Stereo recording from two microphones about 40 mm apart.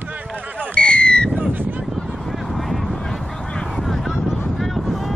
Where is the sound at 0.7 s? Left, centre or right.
Left.